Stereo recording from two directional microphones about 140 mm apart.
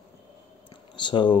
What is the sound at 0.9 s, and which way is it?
Speech, 35° left (ahead or behind).